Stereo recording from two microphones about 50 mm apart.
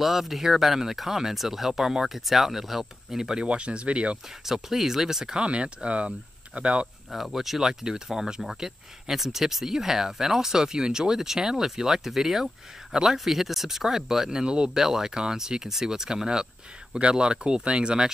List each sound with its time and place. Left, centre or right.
0.0 s speech: centre
3.4 s speech: right
4.5 s speech: centre; by 6.9 s right
7.1 s speech: centre